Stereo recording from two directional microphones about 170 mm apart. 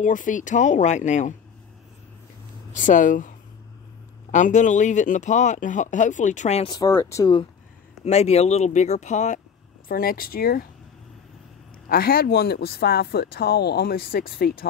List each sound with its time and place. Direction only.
0.0 s speech: 50° left (ahead or behind)
2.7 s speech: 50° left (ahead or behind)
6.7 s speech: 15° left (ahead or behind)
8.0 s speech: 40° left (ahead or behind)
9.8 s speech: 60° left (ahead or behind)
11.9 s speech: 60° left (ahead or behind)